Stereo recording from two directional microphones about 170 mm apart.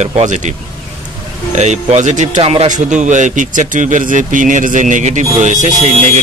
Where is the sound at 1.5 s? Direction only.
40° right (ahead or behind).